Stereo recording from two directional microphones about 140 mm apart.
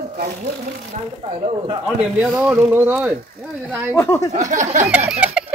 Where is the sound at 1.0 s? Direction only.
50° right (ahead or behind).